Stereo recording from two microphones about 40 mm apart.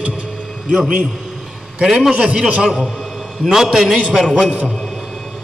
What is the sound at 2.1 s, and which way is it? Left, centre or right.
Speech, right.